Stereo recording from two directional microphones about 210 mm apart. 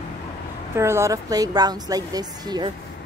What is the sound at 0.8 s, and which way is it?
Speech, 15° right (ahead or behind).